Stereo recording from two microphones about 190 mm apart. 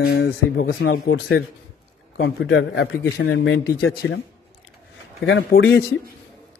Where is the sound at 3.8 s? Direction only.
60° left (ahead or behind).